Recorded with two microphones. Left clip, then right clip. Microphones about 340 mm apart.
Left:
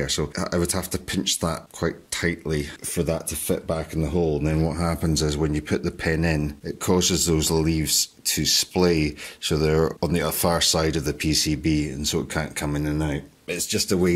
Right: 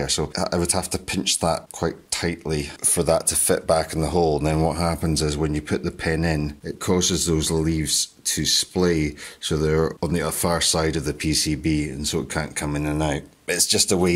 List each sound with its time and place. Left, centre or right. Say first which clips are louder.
0.0 s speech: right 2 dB; centre